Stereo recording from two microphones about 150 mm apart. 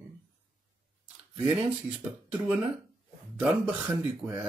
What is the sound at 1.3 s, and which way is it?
Speech, 35° right (ahead or behind).